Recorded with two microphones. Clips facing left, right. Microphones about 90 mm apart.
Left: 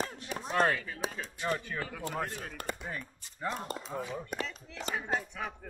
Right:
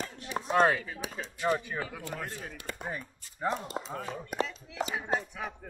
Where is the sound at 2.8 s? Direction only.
15° right (ahead or behind).